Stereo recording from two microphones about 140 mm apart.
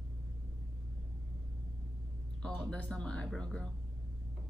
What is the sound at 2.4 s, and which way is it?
Speech, 5° left (ahead or behind).